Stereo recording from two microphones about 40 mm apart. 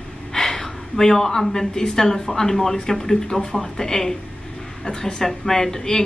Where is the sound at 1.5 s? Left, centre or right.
Centre.